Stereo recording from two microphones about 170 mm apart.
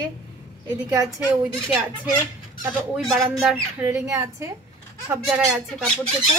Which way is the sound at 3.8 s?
20° right (ahead or behind).